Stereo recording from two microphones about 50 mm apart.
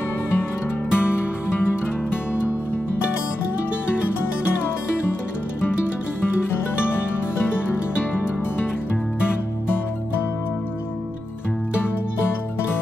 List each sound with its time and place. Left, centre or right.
0.9 s music: left